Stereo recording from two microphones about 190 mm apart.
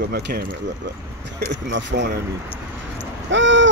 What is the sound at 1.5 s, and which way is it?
Speech, 70° right (ahead or behind).